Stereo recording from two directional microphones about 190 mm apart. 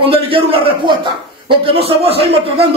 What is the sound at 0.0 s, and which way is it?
A man's voice, 30° right (ahead or behind).